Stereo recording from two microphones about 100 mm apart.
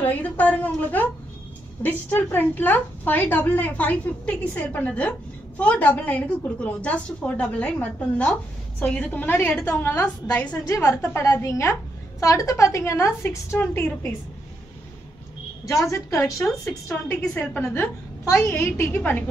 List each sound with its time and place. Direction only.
0.0 s a woman's voice: 15° left (ahead or behind)
10.7 s a woman's voice: 35° left (ahead or behind)
15.6 s a woman's voice: 30° left (ahead or behind)
16.3 s speech: centre (ahead or behind)
16.8 s a woman's voice: 20° left (ahead or behind)
18.2 s a woman's voice: 30° left (ahead or behind)